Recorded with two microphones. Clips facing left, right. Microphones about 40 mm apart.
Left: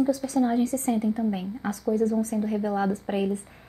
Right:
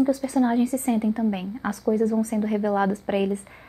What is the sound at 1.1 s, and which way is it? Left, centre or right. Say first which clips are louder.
Speech: right 2 dB; right.